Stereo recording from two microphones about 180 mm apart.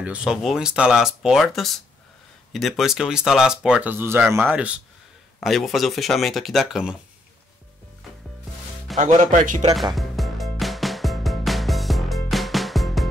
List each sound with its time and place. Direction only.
0.0 s speech: 5° right (ahead or behind)
8.9 s speech: 45° right (ahead or behind)
9.9 s music: centre (ahead or behind)